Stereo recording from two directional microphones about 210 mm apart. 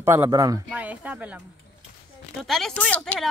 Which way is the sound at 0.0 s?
10° right (ahead or behind).